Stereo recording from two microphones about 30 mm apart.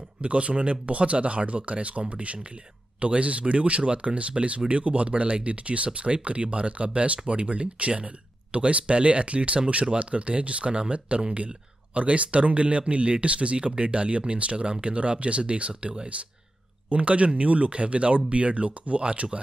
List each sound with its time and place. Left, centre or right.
0.2 s speech: right
16.9 s speech: right